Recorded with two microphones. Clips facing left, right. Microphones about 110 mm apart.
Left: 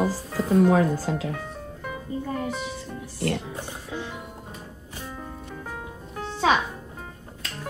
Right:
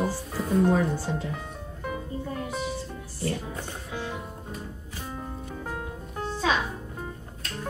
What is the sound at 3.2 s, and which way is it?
Speech, 75° left (ahead or behind).